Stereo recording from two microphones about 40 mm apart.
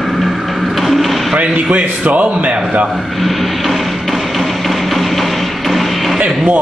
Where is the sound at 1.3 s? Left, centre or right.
Right.